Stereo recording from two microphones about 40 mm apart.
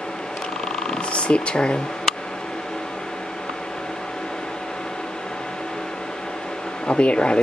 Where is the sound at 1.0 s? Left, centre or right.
Left.